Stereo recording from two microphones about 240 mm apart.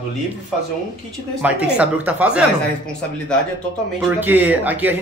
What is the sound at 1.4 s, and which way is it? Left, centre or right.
A man's voice, centre.